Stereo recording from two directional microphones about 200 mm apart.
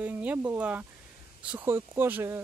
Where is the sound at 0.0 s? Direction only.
10° right (ahead or behind).